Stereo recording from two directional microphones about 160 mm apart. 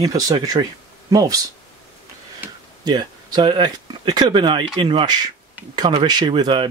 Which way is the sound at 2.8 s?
25° right (ahead or behind).